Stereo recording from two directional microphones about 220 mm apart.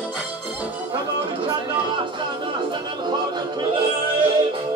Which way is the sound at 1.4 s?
20° right (ahead or behind).